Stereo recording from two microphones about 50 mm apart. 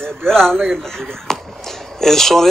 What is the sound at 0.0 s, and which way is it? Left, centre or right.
Speech, centre.